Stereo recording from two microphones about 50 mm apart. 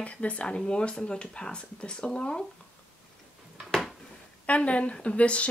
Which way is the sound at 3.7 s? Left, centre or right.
Centre.